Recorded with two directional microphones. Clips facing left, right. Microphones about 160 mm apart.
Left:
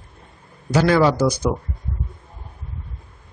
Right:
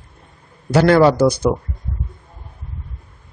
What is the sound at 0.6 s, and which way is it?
Speech, 60° right (ahead or behind).